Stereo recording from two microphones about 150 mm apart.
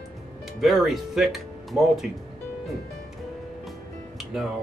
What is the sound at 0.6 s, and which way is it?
Speech, centre (ahead or behind).